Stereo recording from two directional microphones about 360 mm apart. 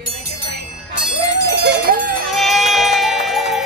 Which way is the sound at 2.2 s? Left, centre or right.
Centre.